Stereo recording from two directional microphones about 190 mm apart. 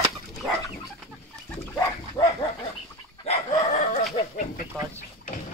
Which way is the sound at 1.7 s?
15° left (ahead or behind).